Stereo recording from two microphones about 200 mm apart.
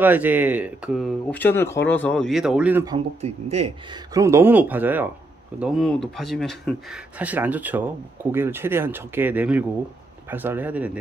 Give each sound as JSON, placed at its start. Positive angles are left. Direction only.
{"t": 0.0, "sound": "speech", "side_deg": -10}
{"t": 1.3, "sound": "speech", "side_deg": 10}
{"t": 3.2, "sound": "speech", "side_deg": -30}
{"t": 4.1, "sound": "speech", "side_deg": -15}